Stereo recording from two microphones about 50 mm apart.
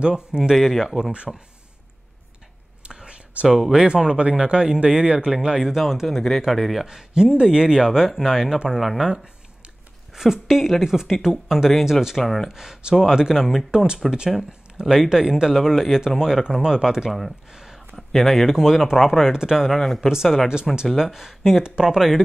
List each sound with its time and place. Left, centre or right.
0.0 s speech: centre
0.6 s speech: centre
2.8 s whispering: centre
3.4 s speech: centre
9.1 s a sound: centre
10.1 s speech: centre
12.2 s speech: centre
12.4 s speech: centre
17.5 s a sound: centre
17.9 s speech: centre
21.6 s speech: centre